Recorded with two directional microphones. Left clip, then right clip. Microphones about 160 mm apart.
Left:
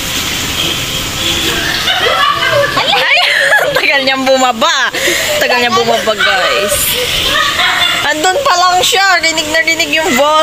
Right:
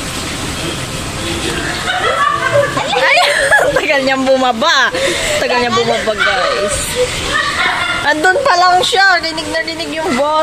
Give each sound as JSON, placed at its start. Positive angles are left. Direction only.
{"t": 3.0, "sound": "speech", "side_deg": -10}
{"t": 8.2, "sound": "speech", "side_deg": -25}
{"t": 8.9, "sound": "speech", "side_deg": -5}